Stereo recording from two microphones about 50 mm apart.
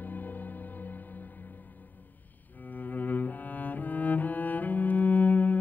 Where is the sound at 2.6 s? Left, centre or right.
Left.